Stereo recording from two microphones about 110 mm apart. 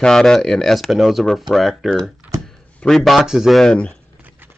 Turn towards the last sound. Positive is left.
turn(degrees=-15)  # may be behind; listen again after turning